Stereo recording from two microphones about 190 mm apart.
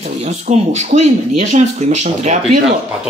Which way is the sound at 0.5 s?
40° right (ahead or behind).